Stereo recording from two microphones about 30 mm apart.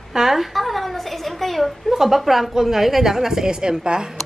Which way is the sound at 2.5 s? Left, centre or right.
Centre.